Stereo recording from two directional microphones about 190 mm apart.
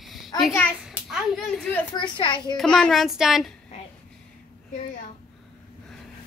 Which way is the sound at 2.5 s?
5° left (ahead or behind).